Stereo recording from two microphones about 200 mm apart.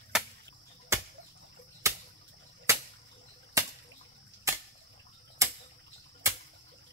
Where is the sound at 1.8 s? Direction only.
15° right (ahead or behind).